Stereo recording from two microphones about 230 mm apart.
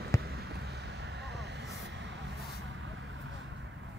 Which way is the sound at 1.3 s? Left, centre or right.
Right.